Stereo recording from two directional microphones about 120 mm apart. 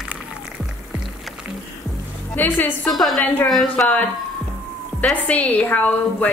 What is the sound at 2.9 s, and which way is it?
A woman's voice, centre (ahead or behind).